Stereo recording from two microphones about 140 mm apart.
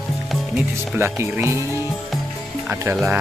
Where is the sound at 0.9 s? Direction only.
15° right (ahead or behind).